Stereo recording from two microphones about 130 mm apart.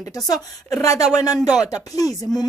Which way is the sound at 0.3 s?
25° left (ahead or behind).